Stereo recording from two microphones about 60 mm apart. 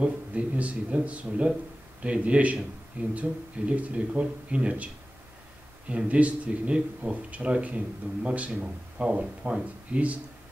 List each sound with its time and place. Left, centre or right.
0.0 s a man's voice: right